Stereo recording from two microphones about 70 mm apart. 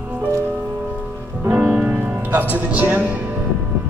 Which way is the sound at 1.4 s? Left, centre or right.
Right.